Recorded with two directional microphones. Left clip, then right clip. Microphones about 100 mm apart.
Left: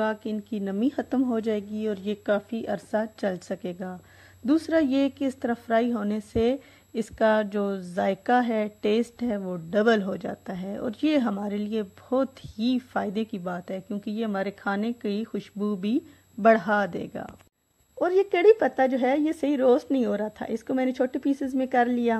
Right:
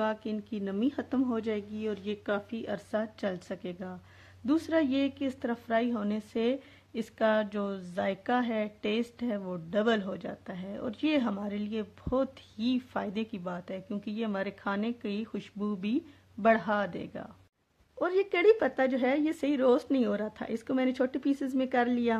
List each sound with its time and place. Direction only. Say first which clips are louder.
0.0 s a woman's voice: left 4 dB; 30° left (ahead or behind)
16.4 s a woman's voice: left 6 dB; 50° left (ahead or behind)
17.9 s a woman's voice: left 6 dB; 30° left (ahead or behind)